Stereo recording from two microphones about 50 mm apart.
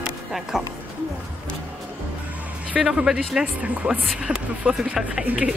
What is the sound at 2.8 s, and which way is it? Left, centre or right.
Speech, centre.